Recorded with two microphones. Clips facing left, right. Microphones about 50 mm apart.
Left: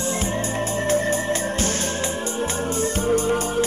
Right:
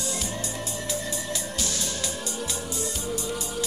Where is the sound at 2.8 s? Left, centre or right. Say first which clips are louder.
Left 12 dB; left.